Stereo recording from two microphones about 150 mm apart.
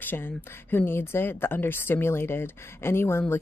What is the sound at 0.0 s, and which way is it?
Speech, 15° left (ahead or behind).